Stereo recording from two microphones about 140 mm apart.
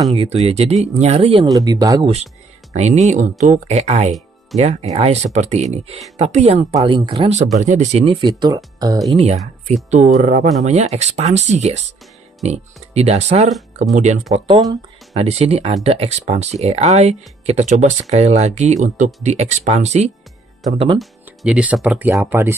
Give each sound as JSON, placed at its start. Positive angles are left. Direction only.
{"t": 0.1, "sound": "speech", "side_deg": -45}
{"t": 1.5, "sound": "speech", "side_deg": -25}
{"t": 2.7, "sound": "speech", "side_deg": -55}
{"t": 6.9, "sound": "speech", "side_deg": -35}
{"t": 7.5, "sound": "speech", "side_deg": -60}
{"t": 9.1, "sound": "speech", "side_deg": -50}
{"t": 15.1, "sound": "speech", "side_deg": -45}
{"t": 20.7, "sound": "speech", "side_deg": -40}
{"t": 21.0, "sound": "speech", "side_deg": -5}